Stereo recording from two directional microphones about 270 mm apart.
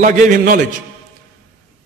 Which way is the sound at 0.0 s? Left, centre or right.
Right.